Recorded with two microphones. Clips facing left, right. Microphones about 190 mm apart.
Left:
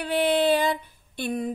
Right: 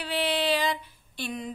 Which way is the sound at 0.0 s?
50° left (ahead or behind).